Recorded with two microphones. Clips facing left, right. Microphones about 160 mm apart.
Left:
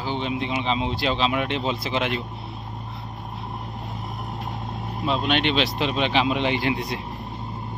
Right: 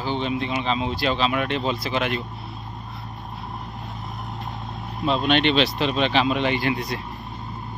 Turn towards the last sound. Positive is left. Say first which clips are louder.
# even
turn(degrees=20)  # may be behind; listen again after turning